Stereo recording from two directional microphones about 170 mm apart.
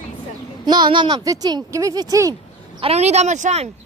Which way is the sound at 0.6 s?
25° right (ahead or behind).